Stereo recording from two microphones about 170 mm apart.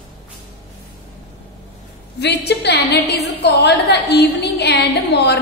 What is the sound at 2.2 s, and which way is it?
A woman's voice, 80° left.